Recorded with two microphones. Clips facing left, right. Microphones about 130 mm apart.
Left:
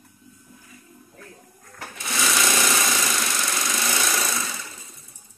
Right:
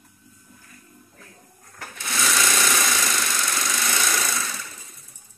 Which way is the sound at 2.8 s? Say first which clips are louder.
Even; 10° left (ahead or behind).